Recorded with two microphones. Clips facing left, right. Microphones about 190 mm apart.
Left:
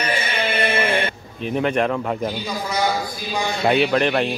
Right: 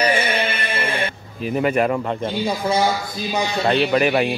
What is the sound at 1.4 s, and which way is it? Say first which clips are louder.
Speech: right 1 dB; 5° right (ahead or behind).